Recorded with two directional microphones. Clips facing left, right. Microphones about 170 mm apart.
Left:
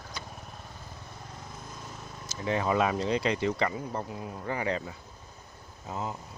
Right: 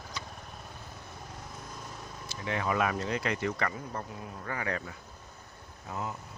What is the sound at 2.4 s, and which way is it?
Speech, 30° left (ahead or behind).